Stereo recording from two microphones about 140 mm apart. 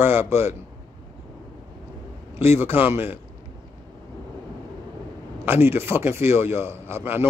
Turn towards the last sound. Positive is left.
turn(degrees=-15)  # may be behind; listen again after turning